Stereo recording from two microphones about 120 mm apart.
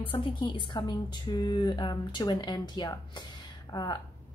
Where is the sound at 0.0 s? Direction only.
45° left (ahead or behind).